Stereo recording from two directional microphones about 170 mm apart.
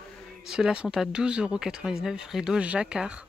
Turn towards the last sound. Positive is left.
turn(degrees=-5)  # may be behind; listen again after turning